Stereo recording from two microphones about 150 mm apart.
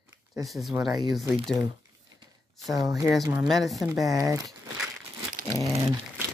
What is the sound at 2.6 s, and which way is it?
Speech, centre (ahead or behind).